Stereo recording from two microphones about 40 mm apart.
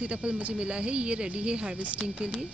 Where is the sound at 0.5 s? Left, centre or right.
Right.